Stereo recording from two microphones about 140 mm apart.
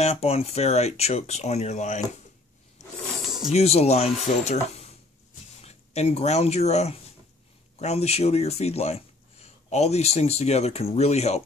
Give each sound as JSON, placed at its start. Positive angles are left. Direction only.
{"t": 0.0, "sound": "speech", "side_deg": 45}
{"t": 3.5, "sound": "speech", "side_deg": 50}